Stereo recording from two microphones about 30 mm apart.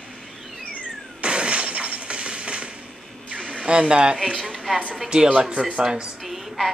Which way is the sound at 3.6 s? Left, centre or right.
Right.